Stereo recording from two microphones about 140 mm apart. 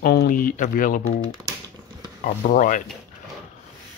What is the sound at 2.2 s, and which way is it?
Speech, 85° left.